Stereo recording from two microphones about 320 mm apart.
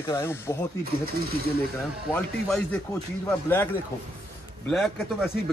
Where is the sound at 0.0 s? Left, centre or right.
Centre.